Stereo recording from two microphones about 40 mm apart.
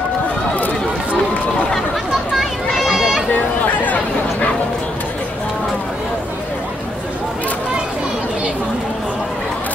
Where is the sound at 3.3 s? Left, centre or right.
Left.